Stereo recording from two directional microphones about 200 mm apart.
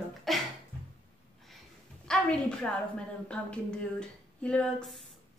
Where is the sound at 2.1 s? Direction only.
5° left (ahead or behind).